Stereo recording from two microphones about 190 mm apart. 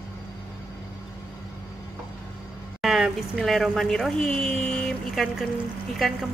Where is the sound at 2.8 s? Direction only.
Centre (ahead or behind).